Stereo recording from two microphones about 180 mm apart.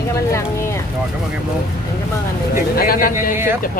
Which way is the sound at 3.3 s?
10° right (ahead or behind).